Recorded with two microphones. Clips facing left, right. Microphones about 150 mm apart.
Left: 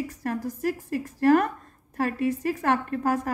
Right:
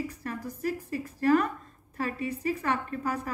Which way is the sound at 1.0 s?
65° left (ahead or behind).